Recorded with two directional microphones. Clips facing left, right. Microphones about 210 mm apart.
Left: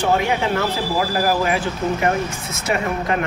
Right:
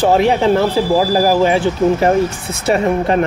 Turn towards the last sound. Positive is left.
turn(degrees=-30)  # may be behind; listen again after turning